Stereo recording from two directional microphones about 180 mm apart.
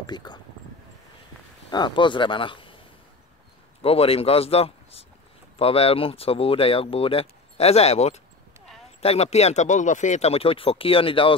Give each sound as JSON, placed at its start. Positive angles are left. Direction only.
{"t": 0.0, "sound": "speech", "side_deg": 25}
{"t": 1.7, "sound": "speech", "side_deg": 25}
{"t": 3.8, "sound": "speech", "side_deg": 35}